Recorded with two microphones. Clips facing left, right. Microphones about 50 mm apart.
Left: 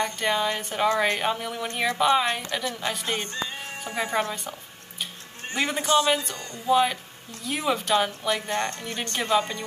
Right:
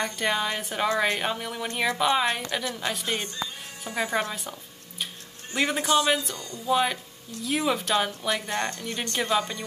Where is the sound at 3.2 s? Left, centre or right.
Left.